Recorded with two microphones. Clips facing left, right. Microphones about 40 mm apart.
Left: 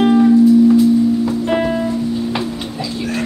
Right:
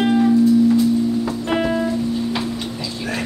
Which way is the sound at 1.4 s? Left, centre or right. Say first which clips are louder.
Left 3 dB; centre.